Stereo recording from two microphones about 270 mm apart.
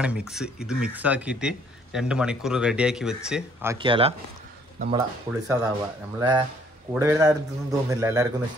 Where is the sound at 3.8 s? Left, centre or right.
Centre.